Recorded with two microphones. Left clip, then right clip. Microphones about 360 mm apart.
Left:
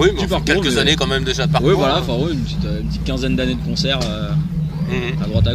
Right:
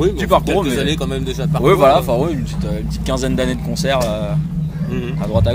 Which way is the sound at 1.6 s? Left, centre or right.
Centre.